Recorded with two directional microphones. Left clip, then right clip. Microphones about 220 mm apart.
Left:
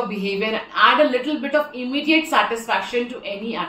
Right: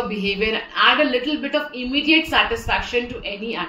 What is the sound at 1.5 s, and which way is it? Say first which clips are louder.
Speech: left 3 dB; 45° left (ahead or behind).